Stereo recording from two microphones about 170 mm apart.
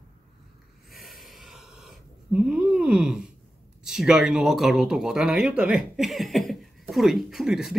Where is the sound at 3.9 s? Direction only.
5° right (ahead or behind).